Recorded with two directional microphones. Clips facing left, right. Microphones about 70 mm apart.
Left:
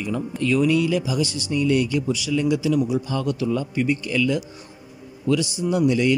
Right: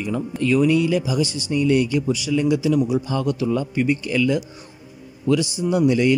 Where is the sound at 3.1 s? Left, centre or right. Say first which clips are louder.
Right 2 dB; right.